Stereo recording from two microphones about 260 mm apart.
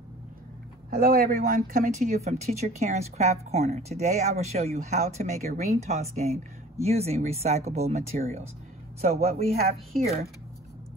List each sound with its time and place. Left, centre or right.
0.8 s speech: right